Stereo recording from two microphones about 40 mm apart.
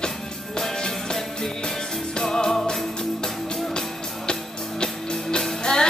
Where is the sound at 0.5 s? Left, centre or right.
Centre.